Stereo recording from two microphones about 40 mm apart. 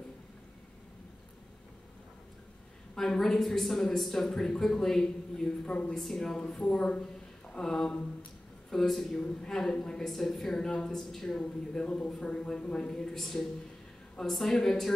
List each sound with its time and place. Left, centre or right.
3.0 s a man's voice: centre
5.7 s speech: left
5.9 s a man's voice: centre
7.4 s a sound: left
7.7 s speech: centre
8.6 s a man's voice: centre
11.4 s speech: left
13.1 s a man's voice: centre